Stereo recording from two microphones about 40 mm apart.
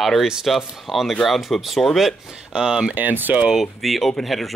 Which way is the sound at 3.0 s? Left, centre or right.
Right.